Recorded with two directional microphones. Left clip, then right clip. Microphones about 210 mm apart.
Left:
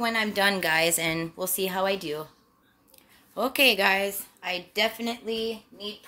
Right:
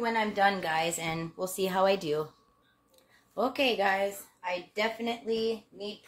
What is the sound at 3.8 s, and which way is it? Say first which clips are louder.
Speech: left 4 dB; 60° left (ahead or behind).